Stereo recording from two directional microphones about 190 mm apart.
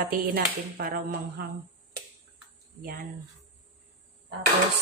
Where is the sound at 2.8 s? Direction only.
50° right (ahead or behind).